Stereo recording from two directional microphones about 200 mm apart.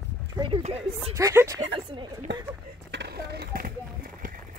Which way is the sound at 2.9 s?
55° right (ahead or behind).